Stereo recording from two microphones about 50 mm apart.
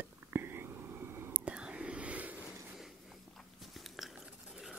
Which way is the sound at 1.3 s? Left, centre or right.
Right.